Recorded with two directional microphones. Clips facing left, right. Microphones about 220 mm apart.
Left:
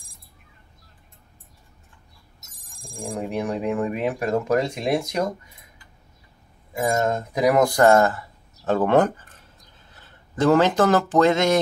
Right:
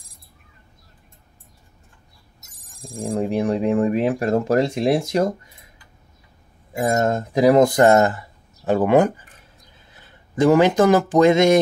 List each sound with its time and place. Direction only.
3.0 s speech: 30° right (ahead or behind)
7.1 s speech: 30° right (ahead or behind)